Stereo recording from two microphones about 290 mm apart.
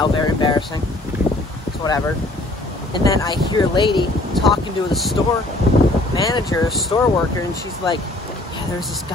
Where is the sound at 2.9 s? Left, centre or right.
Centre.